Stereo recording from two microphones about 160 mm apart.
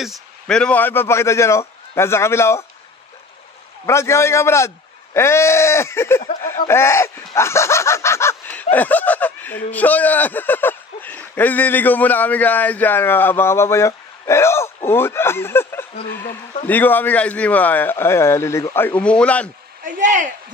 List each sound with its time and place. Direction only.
0.0 s speech: centre (ahead or behind); by 2.6 s 15° left (ahead or behind)
3.8 s speech: 15° left (ahead or behind)
19.8 s speech: 55° right (ahead or behind)